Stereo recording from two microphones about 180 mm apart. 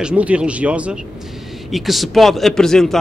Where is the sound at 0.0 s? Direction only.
5° right (ahead or behind).